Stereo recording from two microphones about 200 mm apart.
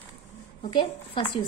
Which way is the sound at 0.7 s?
25° left (ahead or behind).